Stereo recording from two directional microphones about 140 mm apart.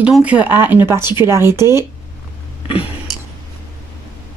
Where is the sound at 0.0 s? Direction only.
10° right (ahead or behind).